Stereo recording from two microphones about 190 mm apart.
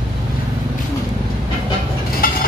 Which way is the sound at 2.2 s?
50° left (ahead or behind).